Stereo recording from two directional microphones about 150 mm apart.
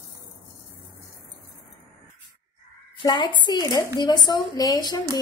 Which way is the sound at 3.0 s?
25° left (ahead or behind).